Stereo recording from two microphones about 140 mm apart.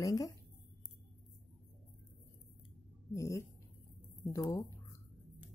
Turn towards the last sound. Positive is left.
turn(degrees=25)  # may be behind; listen again after turning